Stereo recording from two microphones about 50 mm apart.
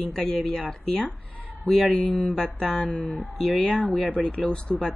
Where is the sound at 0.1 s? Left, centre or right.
Centre.